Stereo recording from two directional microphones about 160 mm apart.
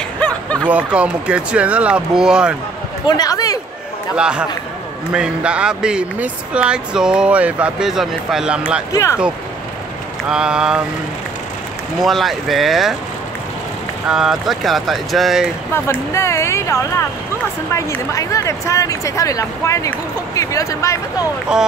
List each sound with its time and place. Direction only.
0.2 s a sound: 5° left (ahead or behind)
0.7 s speech: 10° right (ahead or behind)
3.1 s speech: 25° left (ahead or behind)
4.2 s speech: 5° right (ahead or behind)
8.9 s speech: 20° left (ahead or behind)
10.3 s speech: 5° right (ahead or behind)
12.0 s speech: centre (ahead or behind)
14.0 s speech: 5° right (ahead or behind)
15.7 s speech: 15° left (ahead or behind)
21.5 s speech: 5° right (ahead or behind)